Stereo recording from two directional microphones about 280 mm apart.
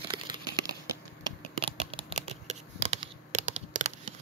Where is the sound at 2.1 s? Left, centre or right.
Right.